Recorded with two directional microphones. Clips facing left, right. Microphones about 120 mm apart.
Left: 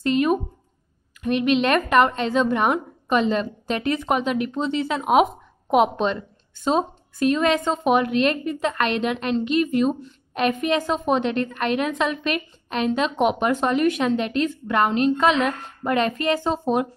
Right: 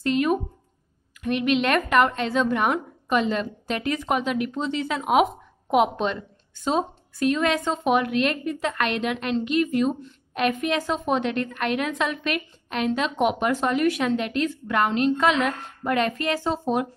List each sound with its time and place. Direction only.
0.0 s a woman's voice: 20° left (ahead or behind)
8.0 s a woman's voice: 30° left (ahead or behind)
10.5 s a woman's voice: 15° left (ahead or behind)